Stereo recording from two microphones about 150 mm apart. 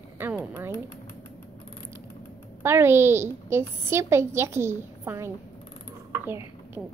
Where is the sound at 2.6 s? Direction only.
15° right (ahead or behind).